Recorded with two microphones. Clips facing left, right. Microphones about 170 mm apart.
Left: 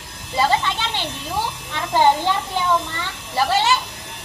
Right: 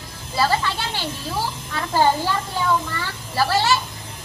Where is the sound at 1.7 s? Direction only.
20° left (ahead or behind).